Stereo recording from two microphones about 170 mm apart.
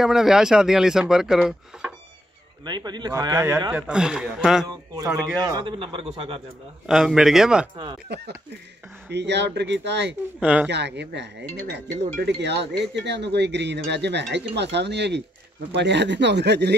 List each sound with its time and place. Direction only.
0.0 s speech: centre (ahead or behind)
2.6 s speech: 25° right (ahead or behind)
3.7 s speech: 5° right (ahead or behind)
4.6 s speech: 20° right (ahead or behind)
5.6 s a man's voice: 30° right (ahead or behind)
6.9 s speech: centre (ahead or behind)
7.7 s speech: 25° right (ahead or behind)
9.1 s speech: 90° right
10.4 s speech: 10° right (ahead or behind)
10.7 s speech: 85° right